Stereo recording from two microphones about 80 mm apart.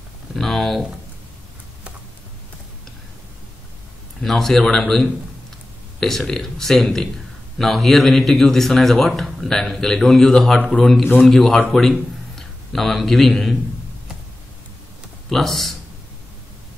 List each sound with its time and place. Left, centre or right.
0.4 s speech: centre
4.2 s speech: centre
10.6 s a man's voice: centre
11.1 s a man's voice: centre
15.2 s speech: centre